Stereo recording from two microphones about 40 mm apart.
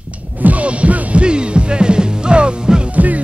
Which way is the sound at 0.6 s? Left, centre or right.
Right.